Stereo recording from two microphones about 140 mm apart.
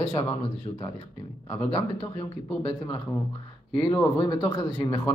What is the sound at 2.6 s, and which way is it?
Speech, 40° left (ahead or behind).